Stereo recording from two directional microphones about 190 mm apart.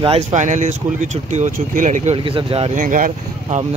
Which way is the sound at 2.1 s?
30° right (ahead or behind).